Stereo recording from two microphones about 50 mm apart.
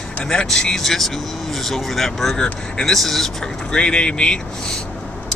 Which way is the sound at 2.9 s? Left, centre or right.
Centre.